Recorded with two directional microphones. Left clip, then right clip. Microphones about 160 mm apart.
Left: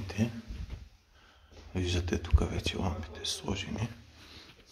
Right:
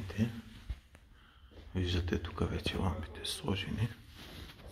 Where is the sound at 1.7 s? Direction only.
5° left (ahead or behind).